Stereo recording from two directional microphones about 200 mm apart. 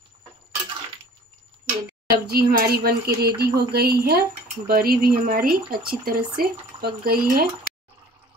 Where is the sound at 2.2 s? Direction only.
50° right (ahead or behind).